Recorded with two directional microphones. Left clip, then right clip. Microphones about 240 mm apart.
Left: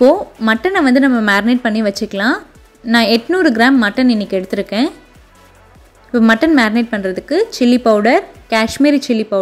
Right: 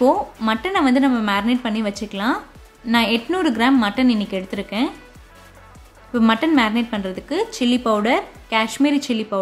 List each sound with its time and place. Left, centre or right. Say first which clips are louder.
0.0 s speech: left 6 dB; centre
6.1 s a woman's voice: left 6 dB; centre